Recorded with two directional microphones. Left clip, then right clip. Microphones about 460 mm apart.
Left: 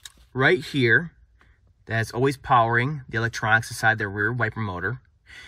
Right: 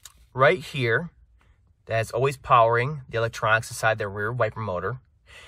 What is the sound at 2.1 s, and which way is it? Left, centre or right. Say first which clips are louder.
Speech: right 1 dB; right.